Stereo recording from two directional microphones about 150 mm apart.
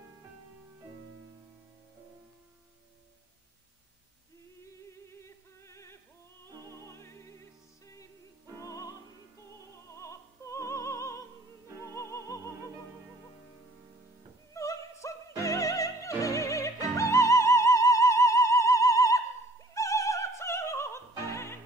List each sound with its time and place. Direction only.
5.2 s music: 20° left (ahead or behind)
9.7 s opera: 20° left (ahead or behind)
11.8 s music: 20° left (ahead or behind)
14.5 s opera: 20° left (ahead or behind)
21.3 s music: 20° left (ahead or behind)